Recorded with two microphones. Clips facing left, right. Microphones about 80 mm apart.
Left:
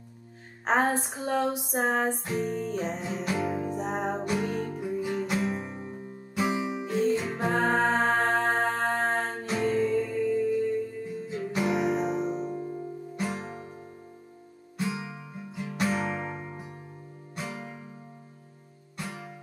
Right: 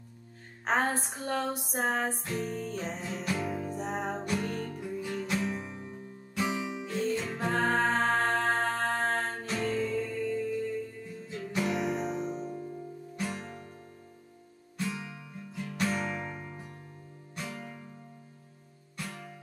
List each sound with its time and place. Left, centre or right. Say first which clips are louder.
0.7 s a sound: left 4 dB; centre
2.2 s music: left 4 dB; centre
12.5 s music: left 5 dB; left
13.1 s music: left 3 dB; centre
14.8 s music: left 4 dB; centre
18.9 s music: left 3 dB; centre